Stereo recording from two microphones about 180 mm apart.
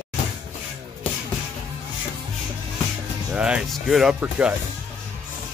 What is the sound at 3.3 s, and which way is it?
Speech, 5° right (ahead or behind).